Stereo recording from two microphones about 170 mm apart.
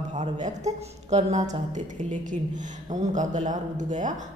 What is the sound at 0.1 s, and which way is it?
A woman's voice, 45° right (ahead or behind).